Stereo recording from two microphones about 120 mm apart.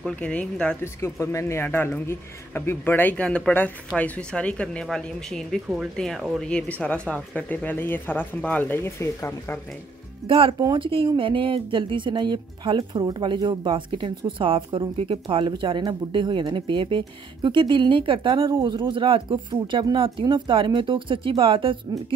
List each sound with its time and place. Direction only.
0.0 s speech: 10° left (ahead or behind)
1.2 s speech: 25° left (ahead or behind)
10.2 s speech: 45° right (ahead or behind)